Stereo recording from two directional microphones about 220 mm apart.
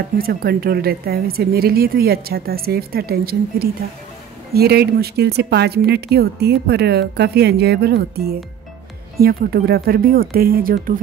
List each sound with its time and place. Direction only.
0.2 s a woman's voice: 45° right (ahead or behind)